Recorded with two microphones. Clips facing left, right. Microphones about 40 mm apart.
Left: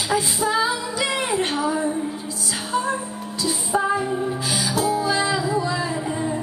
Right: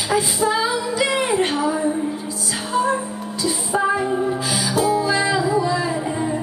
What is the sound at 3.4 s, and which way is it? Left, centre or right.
Music, centre.